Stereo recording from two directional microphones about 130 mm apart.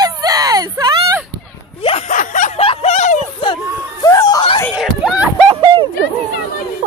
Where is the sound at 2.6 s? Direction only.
50° left (ahead or behind).